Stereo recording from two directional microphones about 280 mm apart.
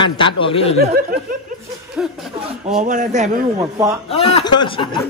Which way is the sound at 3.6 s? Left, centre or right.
Centre.